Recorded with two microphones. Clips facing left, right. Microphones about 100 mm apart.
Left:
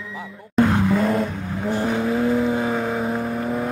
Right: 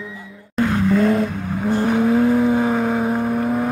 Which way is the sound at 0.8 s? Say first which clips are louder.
Right 3 dB; 5° left (ahead or behind).